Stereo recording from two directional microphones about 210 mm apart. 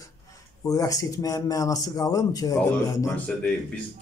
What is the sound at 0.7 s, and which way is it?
Speech, 15° left (ahead or behind).